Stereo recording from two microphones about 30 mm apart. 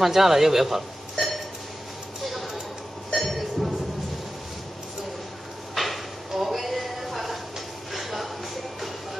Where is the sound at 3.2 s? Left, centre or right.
Centre.